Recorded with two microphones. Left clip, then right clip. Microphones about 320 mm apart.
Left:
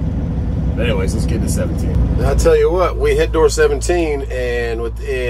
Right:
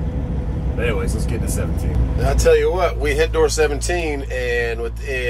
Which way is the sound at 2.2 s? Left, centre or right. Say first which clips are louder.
Left 2 dB; centre.